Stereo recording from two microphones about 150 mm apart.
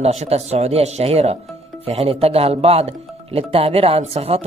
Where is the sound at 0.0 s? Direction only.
45° right (ahead or behind).